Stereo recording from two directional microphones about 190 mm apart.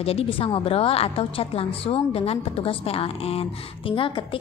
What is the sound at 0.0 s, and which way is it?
A woman's voice, 30° left (ahead or behind).